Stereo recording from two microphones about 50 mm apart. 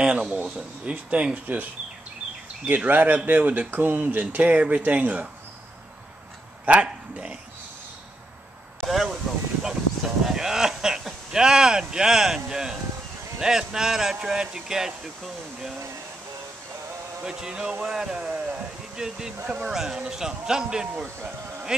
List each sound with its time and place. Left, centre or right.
0.0 s speech: centre
6.6 s speech: right
8.8 s speech: centre
17.2 s speech: centre